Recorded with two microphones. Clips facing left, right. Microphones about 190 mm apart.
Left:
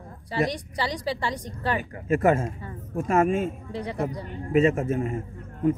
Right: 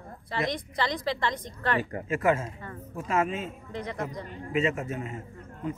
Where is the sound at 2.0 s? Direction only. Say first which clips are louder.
Left 6 dB; 45° left (ahead or behind).